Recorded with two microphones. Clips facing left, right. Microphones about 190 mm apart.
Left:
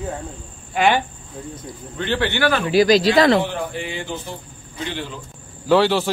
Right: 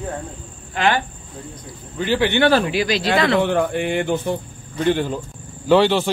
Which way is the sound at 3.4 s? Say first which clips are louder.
Right 7 dB; 60° right (ahead or behind).